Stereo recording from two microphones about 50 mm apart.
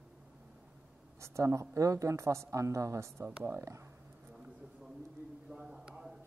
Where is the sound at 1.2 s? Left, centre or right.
Right.